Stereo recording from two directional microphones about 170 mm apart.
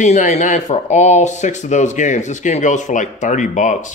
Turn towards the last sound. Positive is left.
turn(degrees=45)  # may be behind; listen again after turning